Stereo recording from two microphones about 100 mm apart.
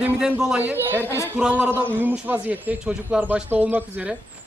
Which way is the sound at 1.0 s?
25° left (ahead or behind).